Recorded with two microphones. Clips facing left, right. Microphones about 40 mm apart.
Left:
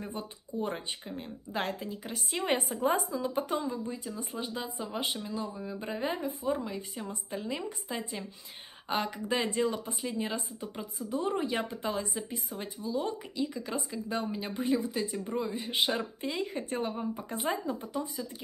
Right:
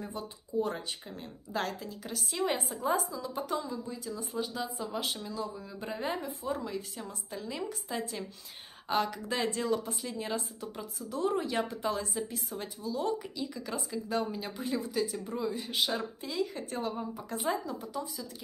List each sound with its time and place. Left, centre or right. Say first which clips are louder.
0.1 s a woman's voice: right 3 dB; left
7.1 s speech: left 3 dB; left
7.9 s speech: even; centre; by 18.3 s left